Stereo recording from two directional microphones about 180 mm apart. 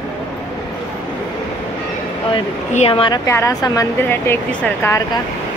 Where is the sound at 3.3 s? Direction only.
15° left (ahead or behind).